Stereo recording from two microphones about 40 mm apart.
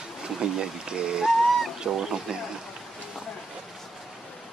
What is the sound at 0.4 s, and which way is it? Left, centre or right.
Speech, centre.